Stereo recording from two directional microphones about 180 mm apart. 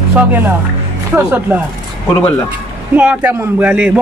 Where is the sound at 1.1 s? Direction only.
10° right (ahead or behind).